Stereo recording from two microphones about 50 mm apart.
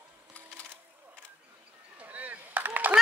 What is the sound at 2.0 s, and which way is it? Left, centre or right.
Chop, right.